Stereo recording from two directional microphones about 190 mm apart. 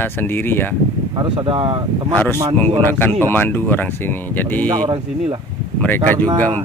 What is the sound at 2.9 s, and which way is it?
Speech, 10° left (ahead or behind).